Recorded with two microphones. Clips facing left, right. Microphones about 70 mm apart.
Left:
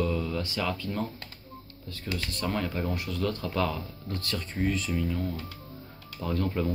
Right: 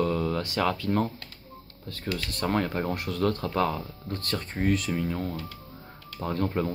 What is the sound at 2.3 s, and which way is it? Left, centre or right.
Speech, right.